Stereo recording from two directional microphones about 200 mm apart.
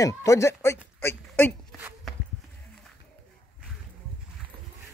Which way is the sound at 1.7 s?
10° right (ahead or behind).